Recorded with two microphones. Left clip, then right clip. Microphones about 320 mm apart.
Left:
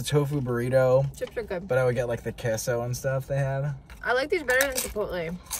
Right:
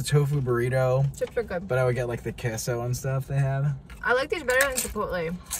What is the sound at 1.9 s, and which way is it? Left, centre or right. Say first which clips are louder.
Speech: left 2 dB; centre.